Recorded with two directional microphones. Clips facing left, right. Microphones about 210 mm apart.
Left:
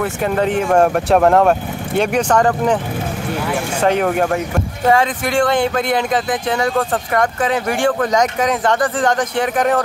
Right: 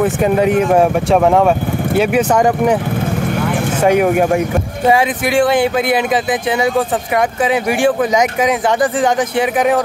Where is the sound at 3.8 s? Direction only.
10° right (ahead or behind).